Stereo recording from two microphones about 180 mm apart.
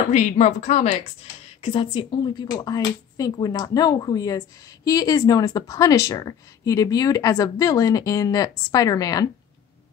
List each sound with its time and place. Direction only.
0.1 s a woman's voice: 40° left (ahead or behind); by 9.3 s 20° left (ahead or behind)